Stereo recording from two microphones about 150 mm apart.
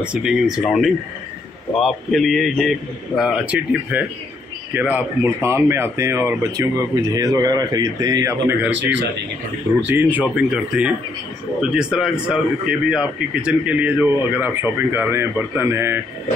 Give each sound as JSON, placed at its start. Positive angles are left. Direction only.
{"t": 0.0, "sound": "a man's voice", "side_deg": -5}